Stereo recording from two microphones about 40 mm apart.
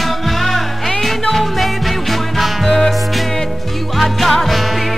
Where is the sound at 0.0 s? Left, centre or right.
Centre.